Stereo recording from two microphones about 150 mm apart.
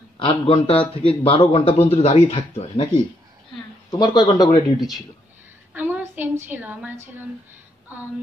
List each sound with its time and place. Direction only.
0.2 s a man's voice: 35° left (ahead or behind)
4.0 s speech: 30° left (ahead or behind)
4.7 s speech: centre (ahead or behind)
5.7 s a sound: 10° right (ahead or behind)
6.4 s a woman's voice: 10° right (ahead or behind)